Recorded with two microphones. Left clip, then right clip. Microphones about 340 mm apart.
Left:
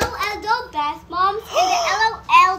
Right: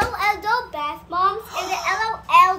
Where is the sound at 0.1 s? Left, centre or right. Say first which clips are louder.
Right 1 dB; centre.